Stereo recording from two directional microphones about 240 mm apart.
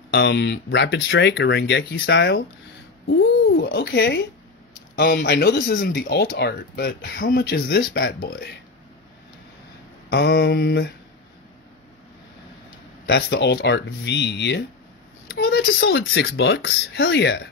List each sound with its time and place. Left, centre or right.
0.1 s speech: left
10.0 s speech: left
13.0 s speech: left